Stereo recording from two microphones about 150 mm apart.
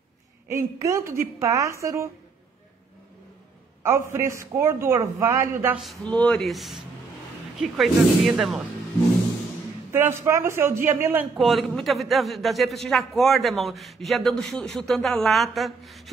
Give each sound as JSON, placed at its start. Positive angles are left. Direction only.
{"t": 0.5, "sound": "a woman's voice", "side_deg": -20}
{"t": 3.8, "sound": "a man's voice", "side_deg": -15}
{"t": 6.0, "sound": "a man's voice", "side_deg": 5}
{"t": 9.9, "sound": "a man's voice", "side_deg": -15}
{"t": 11.3, "sound": "a man's voice", "side_deg": 0}